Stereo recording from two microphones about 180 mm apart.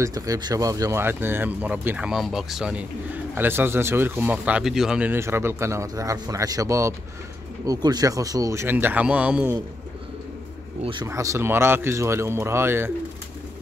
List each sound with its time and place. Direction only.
0.0 s speech: 20° right (ahead or behind)
10.8 s speech: 25° right (ahead or behind)
11.1 s speech: 15° right (ahead or behind)